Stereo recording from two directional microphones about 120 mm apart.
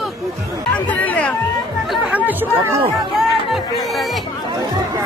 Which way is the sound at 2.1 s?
15° right (ahead or behind).